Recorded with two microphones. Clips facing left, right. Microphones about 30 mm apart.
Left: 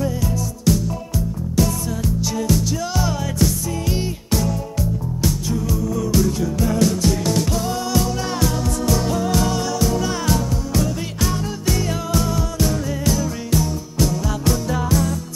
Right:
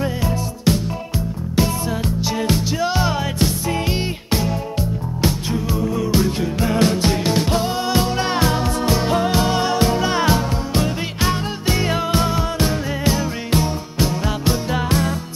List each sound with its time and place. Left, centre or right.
0.0 s music: right